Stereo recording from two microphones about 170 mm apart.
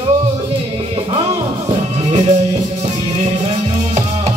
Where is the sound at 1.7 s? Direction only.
35° right (ahead or behind).